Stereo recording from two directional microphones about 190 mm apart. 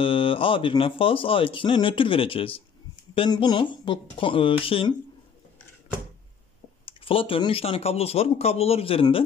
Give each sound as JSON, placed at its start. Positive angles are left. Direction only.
{"t": 0.0, "sound": "speech", "side_deg": 30}
{"t": 6.9, "sound": "speech", "side_deg": 30}